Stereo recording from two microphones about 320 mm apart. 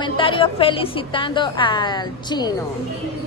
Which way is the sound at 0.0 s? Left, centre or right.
Centre.